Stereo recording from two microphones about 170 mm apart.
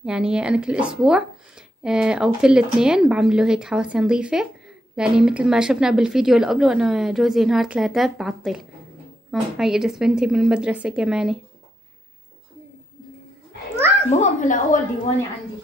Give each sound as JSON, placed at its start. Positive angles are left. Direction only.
{"t": 0.0, "sound": "speech", "side_deg": -5}
{"t": 14.1, "sound": "a woman's voice", "side_deg": 45}